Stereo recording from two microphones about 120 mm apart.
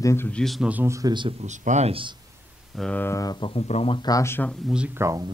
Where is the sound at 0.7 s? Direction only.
20° right (ahead or behind).